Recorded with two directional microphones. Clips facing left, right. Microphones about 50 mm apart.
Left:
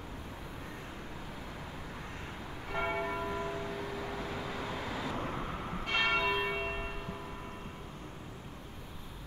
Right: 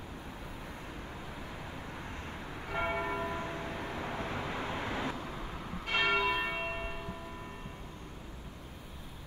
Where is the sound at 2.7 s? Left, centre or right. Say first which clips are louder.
Even; centre.